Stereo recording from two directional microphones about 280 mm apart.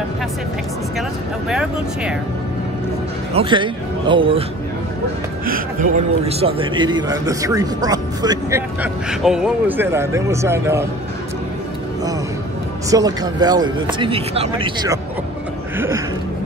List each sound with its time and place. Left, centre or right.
1.5 s speech: centre
3.3 s a man's voice: centre
5.4 s a man's voice: right; by 10.9 s centre
12.9 s a man's voice: centre